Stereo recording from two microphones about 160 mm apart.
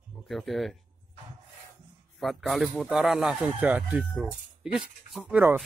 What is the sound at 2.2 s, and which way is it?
A man's voice, centre (ahead or behind).